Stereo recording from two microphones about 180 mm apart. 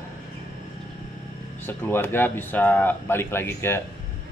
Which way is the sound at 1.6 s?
10° left (ahead or behind).